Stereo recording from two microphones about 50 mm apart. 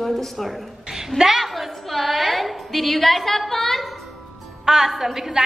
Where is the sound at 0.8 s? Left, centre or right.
Centre.